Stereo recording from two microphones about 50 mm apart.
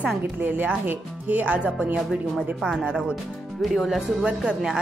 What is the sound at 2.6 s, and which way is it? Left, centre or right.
A woman's voice, centre.